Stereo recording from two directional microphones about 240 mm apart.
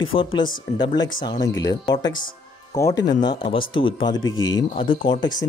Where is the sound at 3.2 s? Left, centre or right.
Centre.